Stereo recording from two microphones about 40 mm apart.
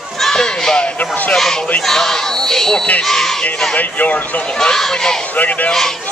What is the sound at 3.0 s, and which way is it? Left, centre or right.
Speech, centre.